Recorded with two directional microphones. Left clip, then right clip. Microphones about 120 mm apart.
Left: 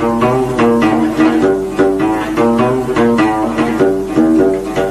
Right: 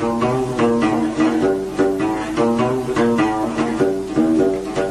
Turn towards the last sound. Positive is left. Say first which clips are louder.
# left 5 dB
turn(degrees=35)  # may be behind; listen again after turning